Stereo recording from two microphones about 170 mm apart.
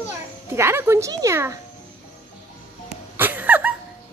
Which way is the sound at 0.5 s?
15° right (ahead or behind).